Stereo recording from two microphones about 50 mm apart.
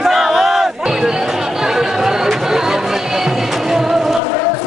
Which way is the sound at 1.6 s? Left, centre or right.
Centre.